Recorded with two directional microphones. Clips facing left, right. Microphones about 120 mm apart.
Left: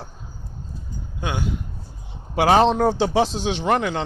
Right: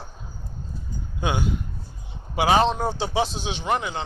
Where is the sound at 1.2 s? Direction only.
15° right (ahead or behind).